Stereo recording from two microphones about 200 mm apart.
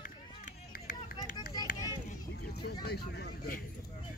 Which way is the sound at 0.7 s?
45° left (ahead or behind).